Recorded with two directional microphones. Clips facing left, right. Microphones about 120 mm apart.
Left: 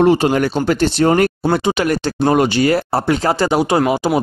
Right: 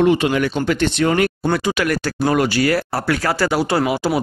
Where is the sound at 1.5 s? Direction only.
25° left (ahead or behind).